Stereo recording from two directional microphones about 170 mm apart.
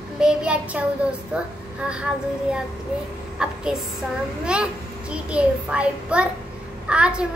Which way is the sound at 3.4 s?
5° right (ahead or behind).